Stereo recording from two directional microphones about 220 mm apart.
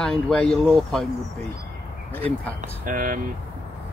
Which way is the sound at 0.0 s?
5° left (ahead or behind).